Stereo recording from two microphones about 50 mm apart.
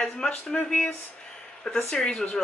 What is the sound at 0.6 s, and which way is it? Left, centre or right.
Speech, left.